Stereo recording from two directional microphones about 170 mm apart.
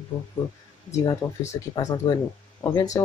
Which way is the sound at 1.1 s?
20° left (ahead or behind).